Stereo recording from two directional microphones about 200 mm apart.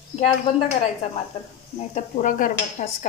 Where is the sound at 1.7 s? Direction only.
35° left (ahead or behind).